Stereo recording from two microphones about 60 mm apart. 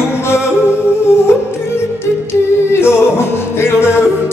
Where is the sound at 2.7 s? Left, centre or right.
Left.